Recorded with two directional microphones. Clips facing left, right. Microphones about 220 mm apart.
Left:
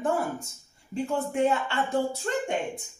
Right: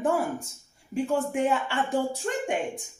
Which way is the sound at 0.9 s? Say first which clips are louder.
Right 2 dB; 15° right (ahead or behind).